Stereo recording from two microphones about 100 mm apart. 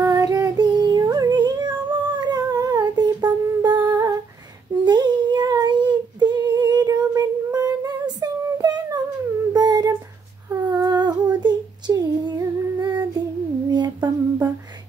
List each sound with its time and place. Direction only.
0.0 s child singing: 35° right (ahead or behind)
0.7 s yodeling: 45° right (ahead or behind)
2.1 s humming: 45° right (ahead or behind)
3.8 s humming: 30° right (ahead or behind)
4.8 s singing: 45° right (ahead or behind)
9.5 s humming: 40° right (ahead or behind)
10.6 s a sound: 45° right (ahead or behind)